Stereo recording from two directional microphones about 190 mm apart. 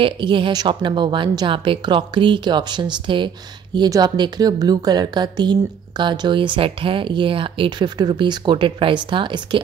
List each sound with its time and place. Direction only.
0.0 s a woman's voice: 25° right (ahead or behind)